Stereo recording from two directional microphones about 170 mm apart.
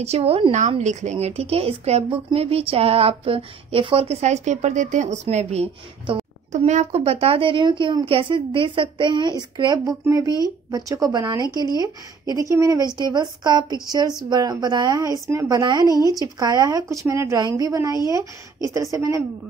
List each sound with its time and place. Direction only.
0.0 s a woman's voice: 35° right (ahead or behind); by 19.2 s 15° right (ahead or behind)